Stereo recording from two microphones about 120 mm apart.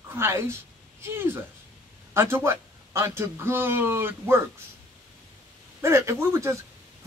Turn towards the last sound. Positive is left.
turn(degrees=-25)  # may be behind; listen again after turning